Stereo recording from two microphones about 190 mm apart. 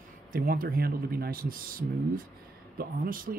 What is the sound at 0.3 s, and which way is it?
Speech, 50° right (ahead or behind).